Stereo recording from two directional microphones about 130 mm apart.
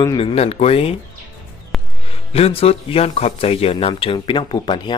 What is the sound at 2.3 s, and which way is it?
A man's voice, 50° left (ahead or behind).